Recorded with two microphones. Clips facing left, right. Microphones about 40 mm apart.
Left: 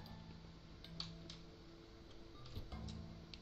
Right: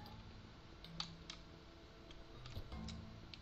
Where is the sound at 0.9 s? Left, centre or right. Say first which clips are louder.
Right 2 dB; right.